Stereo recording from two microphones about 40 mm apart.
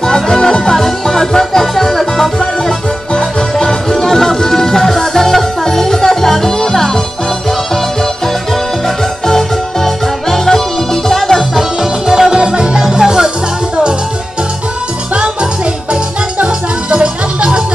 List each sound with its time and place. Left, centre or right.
0.0 s music: centre
8.8 s music: centre
11.5 s music: centre
12.4 s music: centre
15.9 s music: right